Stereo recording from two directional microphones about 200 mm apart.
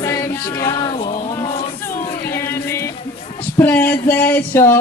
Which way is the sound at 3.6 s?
10° left (ahead or behind).